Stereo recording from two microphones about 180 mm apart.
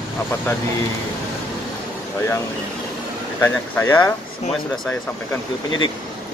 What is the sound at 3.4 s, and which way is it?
Speech, 15° left (ahead or behind).